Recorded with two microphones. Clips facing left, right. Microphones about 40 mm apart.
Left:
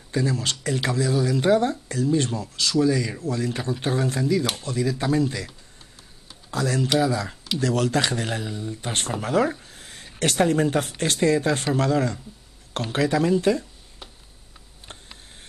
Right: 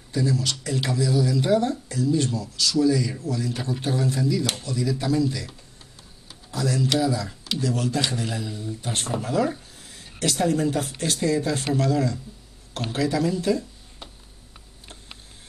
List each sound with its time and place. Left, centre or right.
0.1 s speech: left
6.5 s speech: left
7.6 s speech: left
8.5 s speech: left
9.8 s a sound: left
11.0 s speech: left